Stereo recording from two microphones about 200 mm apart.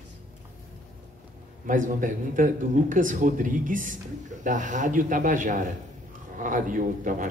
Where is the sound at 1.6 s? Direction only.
40° right (ahead or behind).